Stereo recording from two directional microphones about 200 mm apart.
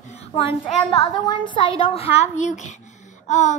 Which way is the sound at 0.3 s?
25° left (ahead or behind).